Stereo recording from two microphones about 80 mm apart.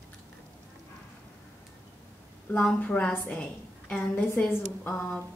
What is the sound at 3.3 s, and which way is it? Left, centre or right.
A woman's voice, centre.